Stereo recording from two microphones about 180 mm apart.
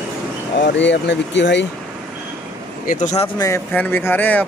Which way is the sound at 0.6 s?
80° left.